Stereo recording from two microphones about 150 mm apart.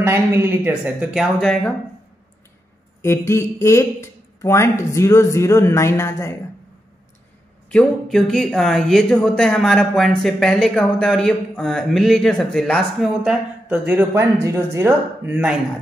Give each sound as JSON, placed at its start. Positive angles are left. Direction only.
{"t": 0.0, "sound": "speech", "side_deg": -15}
{"t": 3.0, "sound": "speech", "side_deg": 15}
{"t": 7.7, "sound": "speech", "side_deg": 5}